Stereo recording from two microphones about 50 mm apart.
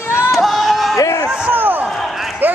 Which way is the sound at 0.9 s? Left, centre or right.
Left.